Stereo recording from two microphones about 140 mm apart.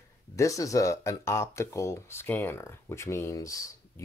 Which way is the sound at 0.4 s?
25° left (ahead or behind).